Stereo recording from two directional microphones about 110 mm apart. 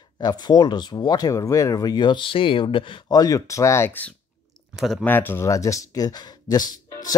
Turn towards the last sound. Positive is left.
turn(degrees=40)  # may be behind; listen again after turning